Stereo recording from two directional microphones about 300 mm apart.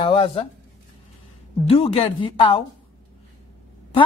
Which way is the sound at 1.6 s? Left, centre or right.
Left.